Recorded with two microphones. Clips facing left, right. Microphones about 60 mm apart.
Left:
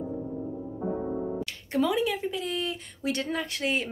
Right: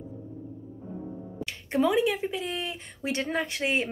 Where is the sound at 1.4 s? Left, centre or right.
Right.